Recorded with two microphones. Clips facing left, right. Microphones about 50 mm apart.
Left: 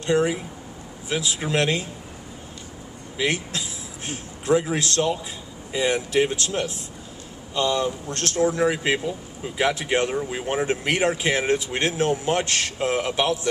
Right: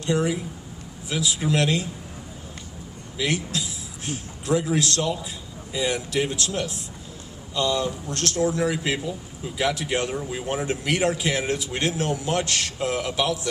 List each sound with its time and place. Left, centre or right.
0.0 s speech: left
3.2 s a man's voice: left